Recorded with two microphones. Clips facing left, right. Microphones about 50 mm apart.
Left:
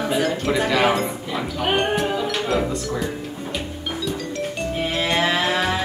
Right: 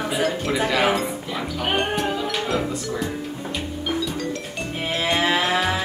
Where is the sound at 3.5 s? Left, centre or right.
Centre.